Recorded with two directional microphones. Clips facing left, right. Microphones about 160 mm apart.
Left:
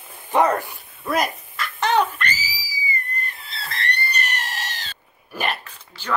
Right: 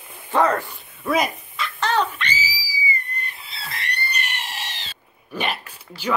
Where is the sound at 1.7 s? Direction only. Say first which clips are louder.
Left 2 dB; 15° left (ahead or behind).